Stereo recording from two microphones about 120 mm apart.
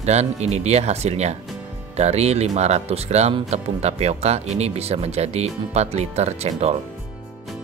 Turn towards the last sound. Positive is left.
turn(degrees=-60)  # may be behind; listen again after turning